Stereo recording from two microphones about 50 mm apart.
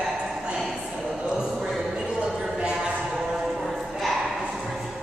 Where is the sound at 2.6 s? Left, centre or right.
Centre.